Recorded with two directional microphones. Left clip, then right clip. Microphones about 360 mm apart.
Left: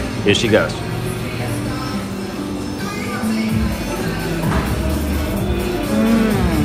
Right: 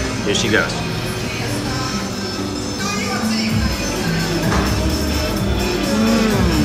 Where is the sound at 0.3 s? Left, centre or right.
Centre.